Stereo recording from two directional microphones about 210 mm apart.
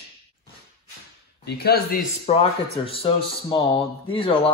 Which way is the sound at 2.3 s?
25° left (ahead or behind).